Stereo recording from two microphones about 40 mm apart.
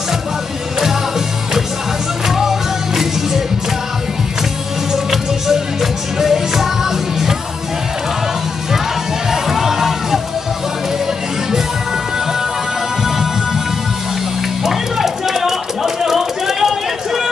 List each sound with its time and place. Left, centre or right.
2.2 s music: centre
4.9 s music: centre
9.3 s music: centre
14.6 s a sound: centre